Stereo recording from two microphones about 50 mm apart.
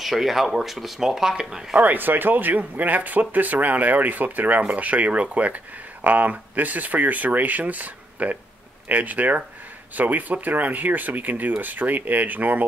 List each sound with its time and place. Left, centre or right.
0.0 s speech: centre
1.8 s speech: right